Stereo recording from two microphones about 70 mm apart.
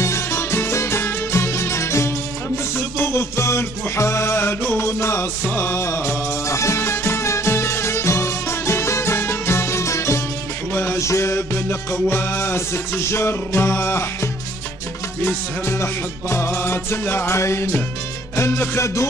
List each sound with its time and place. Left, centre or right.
0.0 s music: left